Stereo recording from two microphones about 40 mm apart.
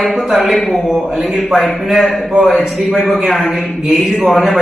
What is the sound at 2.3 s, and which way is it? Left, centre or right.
Speech, right.